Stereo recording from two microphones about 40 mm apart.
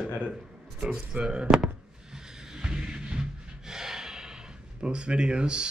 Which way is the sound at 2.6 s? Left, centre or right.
Centre.